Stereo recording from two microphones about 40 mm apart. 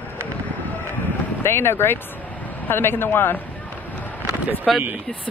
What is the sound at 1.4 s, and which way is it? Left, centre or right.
Speech, left.